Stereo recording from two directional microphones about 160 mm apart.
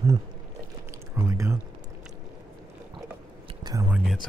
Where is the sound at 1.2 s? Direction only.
15° right (ahead or behind).